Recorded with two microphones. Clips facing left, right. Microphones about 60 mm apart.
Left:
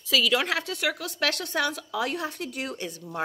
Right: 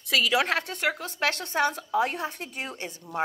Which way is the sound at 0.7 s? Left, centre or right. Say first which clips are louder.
Even; right.